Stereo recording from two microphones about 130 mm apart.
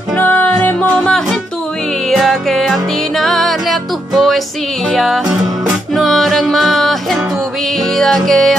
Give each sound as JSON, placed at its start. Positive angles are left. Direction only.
{"t": 0.1, "sound": "music", "side_deg": 15}
{"t": 1.0, "sound": "music", "side_deg": 5}